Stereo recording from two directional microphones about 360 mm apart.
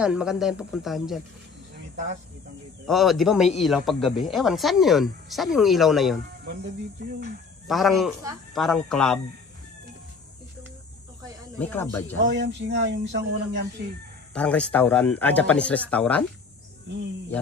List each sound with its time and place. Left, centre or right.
0.0 s speech: centre
2.9 s speech: centre
6.4 s speech: right
7.6 s speech: centre
11.5 s speech: centre
12.4 s speech: right
14.3 s speech: centre